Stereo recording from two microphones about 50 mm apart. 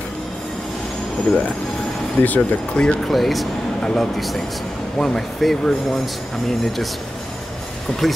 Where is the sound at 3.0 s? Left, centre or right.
Centre.